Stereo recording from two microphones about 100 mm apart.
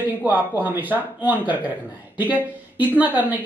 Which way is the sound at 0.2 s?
15° right (ahead or behind).